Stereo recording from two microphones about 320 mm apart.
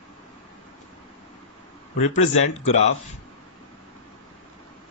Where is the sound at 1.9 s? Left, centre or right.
Left.